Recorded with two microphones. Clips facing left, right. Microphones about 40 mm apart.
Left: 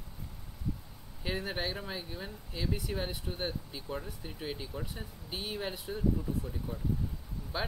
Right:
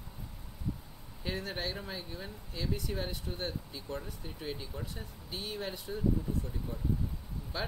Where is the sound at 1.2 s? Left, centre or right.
Centre.